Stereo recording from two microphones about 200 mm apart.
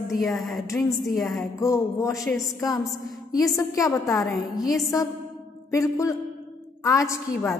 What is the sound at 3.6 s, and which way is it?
Speech, 15° left (ahead or behind).